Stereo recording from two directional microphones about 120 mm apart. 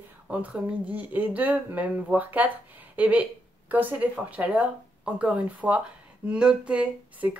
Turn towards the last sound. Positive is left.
turn(degrees=-10)  # may be behind; listen again after turning